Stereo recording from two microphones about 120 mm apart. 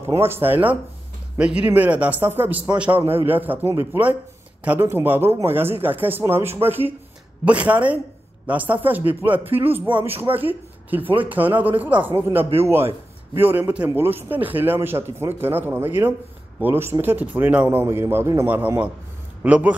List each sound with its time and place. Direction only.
0.0 s a man's voice: 20° right (ahead or behind)